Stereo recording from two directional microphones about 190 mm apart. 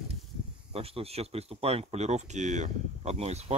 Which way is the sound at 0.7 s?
30° right (ahead or behind).